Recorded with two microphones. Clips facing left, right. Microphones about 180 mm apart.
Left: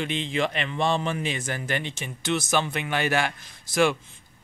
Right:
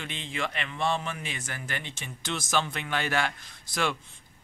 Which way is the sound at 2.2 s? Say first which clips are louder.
Left 5 dB; 65° left (ahead or behind).